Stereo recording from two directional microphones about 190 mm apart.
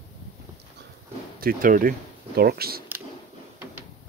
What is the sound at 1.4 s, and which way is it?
Speech, 45° right (ahead or behind).